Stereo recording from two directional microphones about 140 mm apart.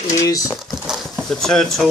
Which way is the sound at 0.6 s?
Centre (ahead or behind).